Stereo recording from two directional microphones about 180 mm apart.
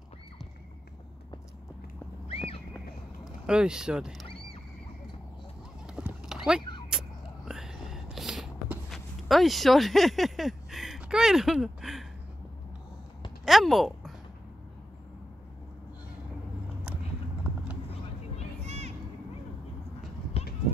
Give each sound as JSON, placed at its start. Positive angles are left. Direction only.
{"t": 2.2, "sound": "horse", "side_deg": 30}
{"t": 3.4, "sound": "speech", "side_deg": -5}
{"t": 5.9, "sound": "clip-clop", "side_deg": -5}
{"t": 6.9, "sound": "whispering", "side_deg": -5}
{"t": 13.5, "sound": "a sound", "side_deg": 0}
{"t": 18.6, "sound": "vehicle", "side_deg": -35}